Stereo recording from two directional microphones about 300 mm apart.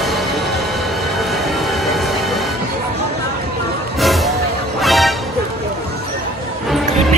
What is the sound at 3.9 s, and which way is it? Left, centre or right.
Music, centre.